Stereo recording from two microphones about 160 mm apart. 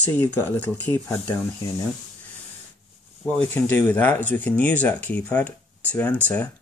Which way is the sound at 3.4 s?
10° left (ahead or behind).